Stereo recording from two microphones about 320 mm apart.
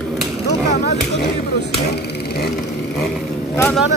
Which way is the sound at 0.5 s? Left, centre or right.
Left.